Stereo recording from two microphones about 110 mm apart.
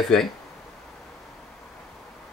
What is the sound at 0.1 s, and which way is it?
Speech, 5° left (ahead or behind).